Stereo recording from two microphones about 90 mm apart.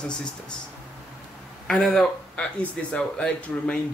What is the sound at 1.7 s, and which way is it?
Speech, 5° left (ahead or behind).